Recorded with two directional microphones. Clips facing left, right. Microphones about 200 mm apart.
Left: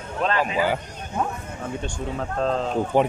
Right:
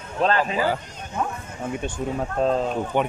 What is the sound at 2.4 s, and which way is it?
Speech, 10° right (ahead or behind).